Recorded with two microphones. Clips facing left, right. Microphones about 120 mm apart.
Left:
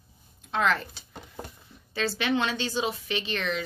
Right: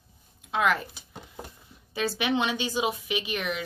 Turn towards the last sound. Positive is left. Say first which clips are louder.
# even
turn(degrees=-10)  # may be behind; listen again after turning